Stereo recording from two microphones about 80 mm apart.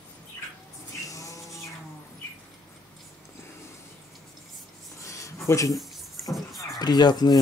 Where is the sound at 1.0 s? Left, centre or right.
Left.